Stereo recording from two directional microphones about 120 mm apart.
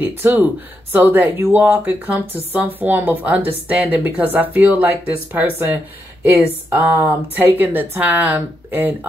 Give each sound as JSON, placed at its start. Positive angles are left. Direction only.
{"t": 0.0, "sound": "speech", "side_deg": -15}